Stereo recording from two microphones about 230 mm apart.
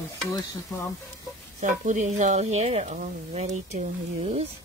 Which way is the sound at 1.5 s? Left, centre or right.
Right.